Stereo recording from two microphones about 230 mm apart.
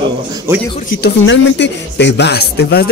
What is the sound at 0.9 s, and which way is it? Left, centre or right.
A man's voice, left.